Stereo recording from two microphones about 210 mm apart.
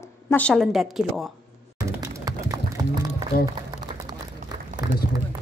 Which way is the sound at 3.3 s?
35° left (ahead or behind).